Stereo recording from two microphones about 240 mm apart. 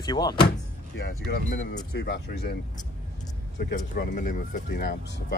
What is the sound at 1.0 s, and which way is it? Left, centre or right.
Speech, left.